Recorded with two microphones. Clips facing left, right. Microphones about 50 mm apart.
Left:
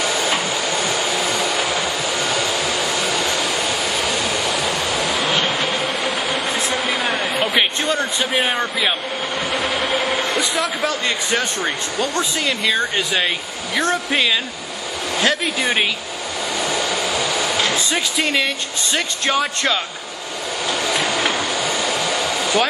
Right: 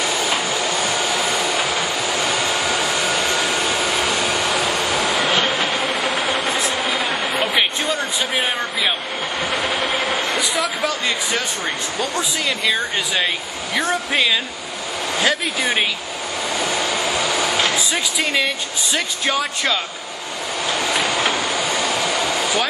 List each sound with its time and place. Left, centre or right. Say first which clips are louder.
1.4 s train: even; centre
3.3 s vehicle: right 1 dB; right
5.3 s vehicle: right 1 dB; centre
6.4 s vehicle: right 1 dB; right
7.3 s a sound: even; centre
10.3 s speech: left 1 dB; centre
16.6 s vehicle: even; right
17.6 s a sound: even; centre
18.9 s speech: left 2 dB; centre
21.1 s vehicle: even; centre
22.2 s a sound: left 1 dB; centre